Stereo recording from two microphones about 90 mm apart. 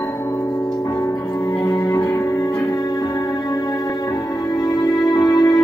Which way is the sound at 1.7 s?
45° left (ahead or behind).